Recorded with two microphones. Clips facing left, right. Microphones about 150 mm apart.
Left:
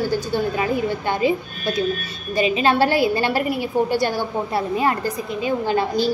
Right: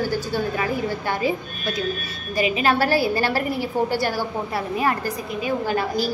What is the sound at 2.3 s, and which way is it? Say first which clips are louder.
A woman's voice: left 3 dB; 25° left (ahead or behind).